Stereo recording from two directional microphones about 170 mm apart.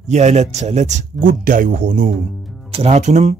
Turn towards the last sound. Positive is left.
turn(degrees=-40)  # may be behind; listen again after turning